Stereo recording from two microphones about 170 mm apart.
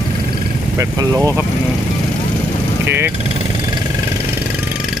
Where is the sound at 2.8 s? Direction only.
15° right (ahead or behind).